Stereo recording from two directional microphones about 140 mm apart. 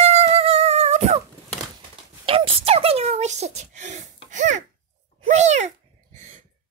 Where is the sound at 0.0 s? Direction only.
50° right (ahead or behind).